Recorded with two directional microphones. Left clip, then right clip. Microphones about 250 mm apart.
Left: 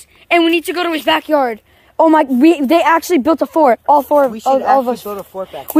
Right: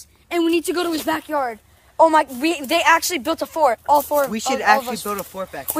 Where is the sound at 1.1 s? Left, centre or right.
Left.